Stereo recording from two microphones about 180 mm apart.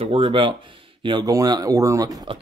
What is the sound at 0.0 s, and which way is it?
Speech, 30° right (ahead or behind).